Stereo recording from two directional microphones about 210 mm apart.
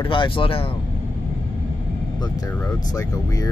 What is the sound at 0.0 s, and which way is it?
Speech, 25° left (ahead or behind).